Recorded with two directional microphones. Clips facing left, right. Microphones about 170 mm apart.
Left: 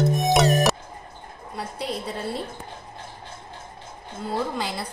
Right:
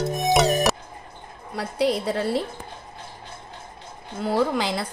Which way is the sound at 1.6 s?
90° right.